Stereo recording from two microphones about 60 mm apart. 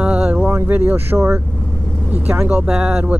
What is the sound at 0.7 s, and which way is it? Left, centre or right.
Speech, right.